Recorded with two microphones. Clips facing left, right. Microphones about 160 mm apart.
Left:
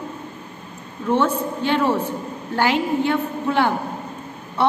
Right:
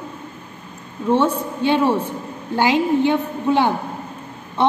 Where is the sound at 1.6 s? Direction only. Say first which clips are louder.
Right 3 dB; 15° right (ahead or behind).